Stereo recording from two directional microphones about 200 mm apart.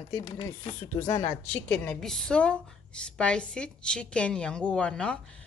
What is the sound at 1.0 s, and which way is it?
Speech, 20° left (ahead or behind).